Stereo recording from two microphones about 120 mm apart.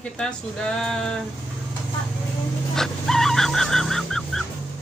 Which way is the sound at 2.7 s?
5° left (ahead or behind).